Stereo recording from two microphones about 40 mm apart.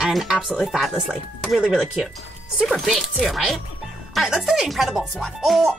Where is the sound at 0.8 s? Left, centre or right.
Centre.